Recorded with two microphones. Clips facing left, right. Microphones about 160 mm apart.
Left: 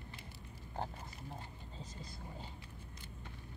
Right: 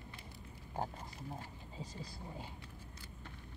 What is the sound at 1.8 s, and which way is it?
Speech, 10° right (ahead or behind).